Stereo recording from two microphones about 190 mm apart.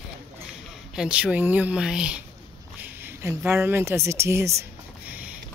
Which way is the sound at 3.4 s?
10° right (ahead or behind).